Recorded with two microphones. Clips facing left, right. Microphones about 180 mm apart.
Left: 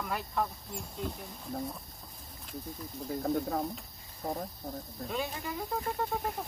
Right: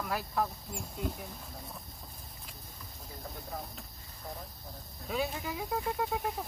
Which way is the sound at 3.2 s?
55° left (ahead or behind).